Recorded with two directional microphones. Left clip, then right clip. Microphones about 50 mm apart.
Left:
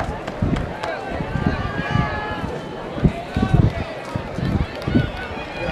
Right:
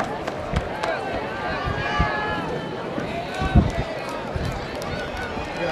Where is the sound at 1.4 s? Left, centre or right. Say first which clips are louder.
Left 1 dB; centre.